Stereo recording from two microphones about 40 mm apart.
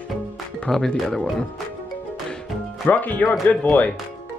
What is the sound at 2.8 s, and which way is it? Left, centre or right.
Speech, left.